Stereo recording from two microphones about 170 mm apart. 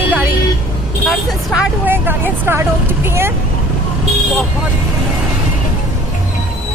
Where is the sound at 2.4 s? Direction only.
15° right (ahead or behind).